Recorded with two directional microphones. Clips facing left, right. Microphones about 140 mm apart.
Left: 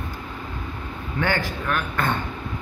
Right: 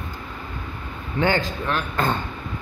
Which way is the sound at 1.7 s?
30° right (ahead or behind).